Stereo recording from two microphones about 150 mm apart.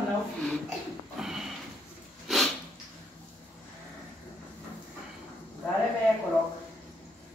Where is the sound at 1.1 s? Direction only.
5° right (ahead or behind).